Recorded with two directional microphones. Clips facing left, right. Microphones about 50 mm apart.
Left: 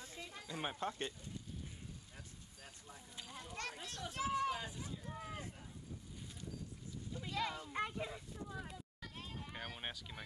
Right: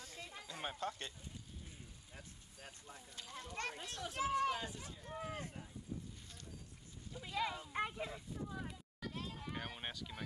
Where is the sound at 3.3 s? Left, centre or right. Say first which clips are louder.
Right 2 dB; centre.